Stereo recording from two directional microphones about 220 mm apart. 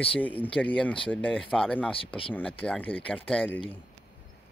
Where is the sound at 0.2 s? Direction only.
5° left (ahead or behind).